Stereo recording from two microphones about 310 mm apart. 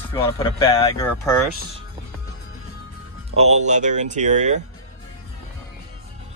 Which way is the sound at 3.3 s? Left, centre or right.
Right.